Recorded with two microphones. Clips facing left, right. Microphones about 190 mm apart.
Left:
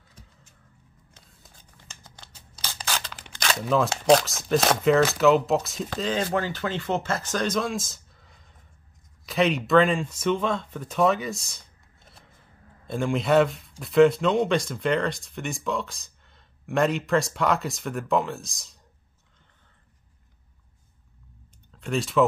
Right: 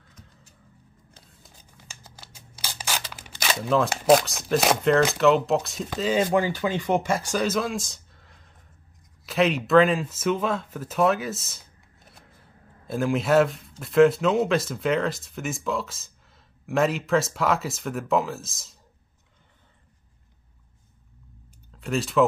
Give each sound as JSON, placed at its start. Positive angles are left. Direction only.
{"t": 1.9, "sound": "camera", "side_deg": -5}
{"t": 5.1, "sound": "speech", "side_deg": 0}
{"t": 12.8, "sound": "speech", "side_deg": -5}
{"t": 21.7, "sound": "speech", "side_deg": 0}